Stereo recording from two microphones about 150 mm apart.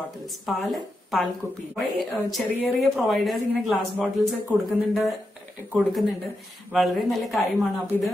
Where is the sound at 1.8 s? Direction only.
Centre (ahead or behind).